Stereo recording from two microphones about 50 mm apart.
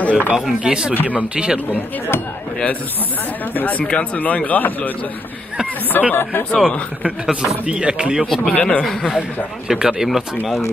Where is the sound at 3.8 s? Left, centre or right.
Left.